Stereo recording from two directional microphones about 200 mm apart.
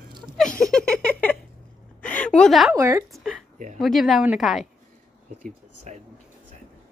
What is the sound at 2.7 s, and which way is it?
Speech, 15° right (ahead or behind).